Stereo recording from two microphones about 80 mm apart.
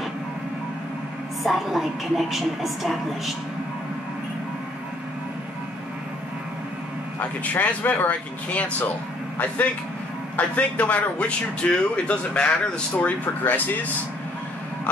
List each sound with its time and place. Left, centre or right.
1.4 s speech: centre
7.2 s a man's voice: left
10.3 s a man's voice: left